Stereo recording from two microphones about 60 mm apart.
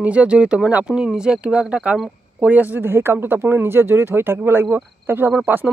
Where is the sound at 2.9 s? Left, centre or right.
Right.